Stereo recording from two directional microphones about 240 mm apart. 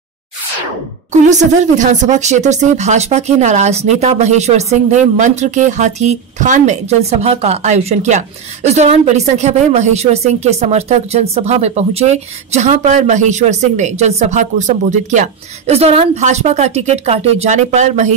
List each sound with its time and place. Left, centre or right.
1.3 s speech: right